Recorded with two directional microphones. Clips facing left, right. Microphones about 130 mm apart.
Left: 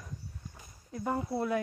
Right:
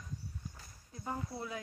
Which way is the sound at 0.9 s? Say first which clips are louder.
Left 9 dB; 75° left (ahead or behind).